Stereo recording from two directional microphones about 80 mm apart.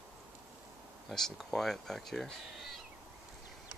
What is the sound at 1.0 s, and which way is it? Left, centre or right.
Speech, centre.